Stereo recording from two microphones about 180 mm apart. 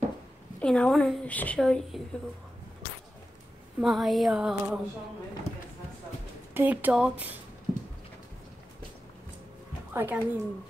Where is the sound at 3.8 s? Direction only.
Centre (ahead or behind).